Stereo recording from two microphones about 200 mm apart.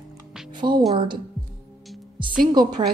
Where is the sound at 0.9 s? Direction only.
25° right (ahead or behind).